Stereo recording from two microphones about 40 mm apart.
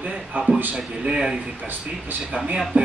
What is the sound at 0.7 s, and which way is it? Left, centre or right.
Speech, centre.